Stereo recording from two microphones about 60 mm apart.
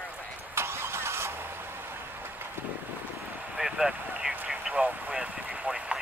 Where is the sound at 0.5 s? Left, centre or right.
Right.